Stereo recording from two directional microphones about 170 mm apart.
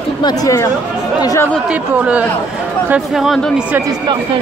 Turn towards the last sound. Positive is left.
turn(degrees=0)  # may be behind; listen again after turning